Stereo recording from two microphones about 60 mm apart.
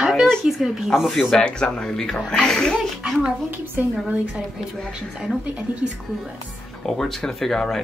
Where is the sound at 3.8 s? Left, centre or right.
Right.